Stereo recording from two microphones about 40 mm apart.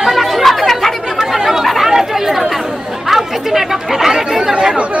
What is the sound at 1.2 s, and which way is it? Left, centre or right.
Chatter, centre.